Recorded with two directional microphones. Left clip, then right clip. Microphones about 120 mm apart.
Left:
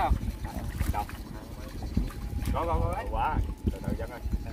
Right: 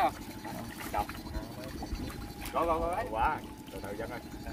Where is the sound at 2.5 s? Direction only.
10° right (ahead or behind).